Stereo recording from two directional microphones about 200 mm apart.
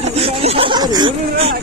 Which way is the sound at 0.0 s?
30° right (ahead or behind).